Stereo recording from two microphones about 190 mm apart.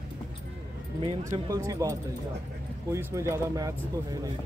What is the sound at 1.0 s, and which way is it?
Speech, 20° right (ahead or behind).